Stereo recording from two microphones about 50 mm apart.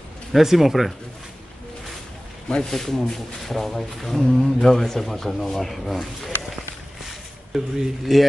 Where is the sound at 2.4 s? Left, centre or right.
Centre.